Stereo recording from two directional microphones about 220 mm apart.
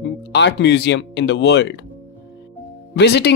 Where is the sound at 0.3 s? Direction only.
55° left (ahead or behind).